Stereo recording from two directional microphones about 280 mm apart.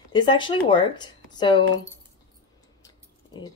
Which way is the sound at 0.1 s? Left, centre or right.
Centre.